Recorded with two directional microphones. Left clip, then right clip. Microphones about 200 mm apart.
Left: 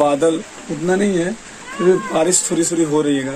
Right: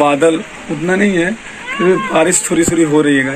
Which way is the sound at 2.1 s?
10° left (ahead or behind).